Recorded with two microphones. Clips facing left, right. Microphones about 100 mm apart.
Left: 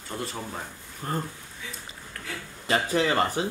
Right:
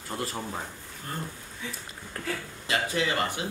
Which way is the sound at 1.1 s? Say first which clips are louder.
Left 6 dB; 40° left (ahead or behind).